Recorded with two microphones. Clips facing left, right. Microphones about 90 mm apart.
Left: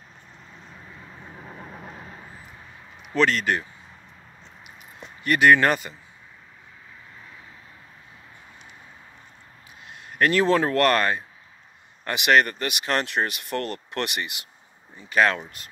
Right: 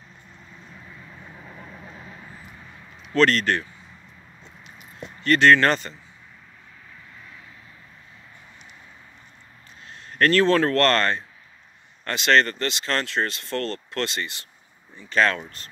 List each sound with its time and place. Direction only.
3.0 s speech: 5° left (ahead or behind)
5.2 s speech: 15° left (ahead or behind)
9.8 s speech: 10° left (ahead or behind)